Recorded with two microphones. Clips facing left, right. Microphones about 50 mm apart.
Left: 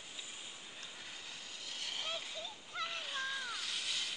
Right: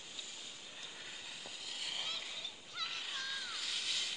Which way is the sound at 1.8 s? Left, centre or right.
Centre.